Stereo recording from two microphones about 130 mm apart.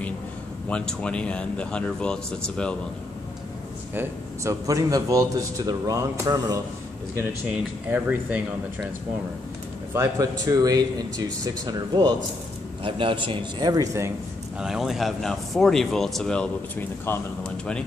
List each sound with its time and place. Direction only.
0.7 s speech: 10° left (ahead or behind)
3.9 s speech: 20° right (ahead or behind)
7.5 s speech: 10° right (ahead or behind)
9.9 s a man's voice: 25° right (ahead or behind)
14.6 s speech: 5° right (ahead or behind)
17.1 s speech: 15° left (ahead or behind)
17.4 s speech: 5° left (ahead or behind)